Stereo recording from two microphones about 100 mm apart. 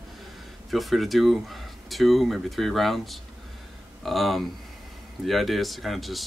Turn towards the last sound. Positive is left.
turn(degrees=0)  # may be behind; listen again after turning